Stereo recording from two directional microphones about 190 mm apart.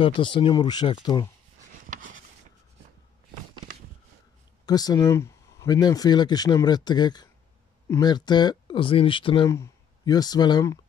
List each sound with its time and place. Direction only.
0.0 s speech: 25° left (ahead or behind)
1.9 s a sound: 45° right (ahead or behind)
4.6 s speech: 20° left (ahead or behind)